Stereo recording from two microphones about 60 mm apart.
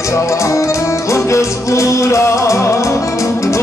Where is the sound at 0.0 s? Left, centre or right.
Left.